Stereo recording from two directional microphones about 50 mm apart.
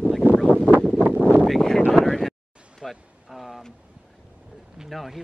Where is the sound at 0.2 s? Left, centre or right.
Right.